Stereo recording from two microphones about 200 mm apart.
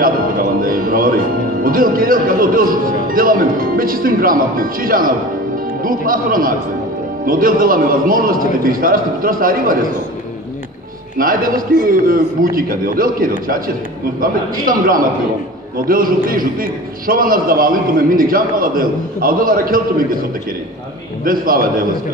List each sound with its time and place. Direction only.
0.0 s a man's voice: 45° right (ahead or behind)
11.1 s a man's voice: 45° right (ahead or behind)